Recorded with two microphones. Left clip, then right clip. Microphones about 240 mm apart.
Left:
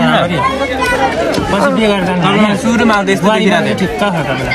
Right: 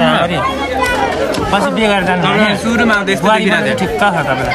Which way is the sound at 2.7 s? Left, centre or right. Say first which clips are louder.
Left 1 dB; centre.